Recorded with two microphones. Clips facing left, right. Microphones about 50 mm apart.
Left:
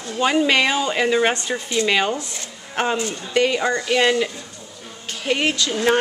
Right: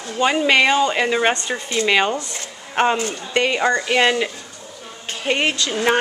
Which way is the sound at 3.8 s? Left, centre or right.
Centre.